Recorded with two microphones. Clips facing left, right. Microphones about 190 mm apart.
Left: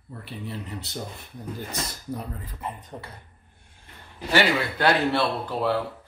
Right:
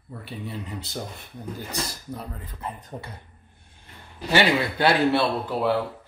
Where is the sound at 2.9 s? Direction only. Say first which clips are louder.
Right 2 dB; 15° right (ahead or behind).